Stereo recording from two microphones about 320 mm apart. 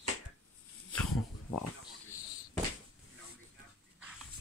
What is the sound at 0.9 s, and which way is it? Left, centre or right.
Pig, centre.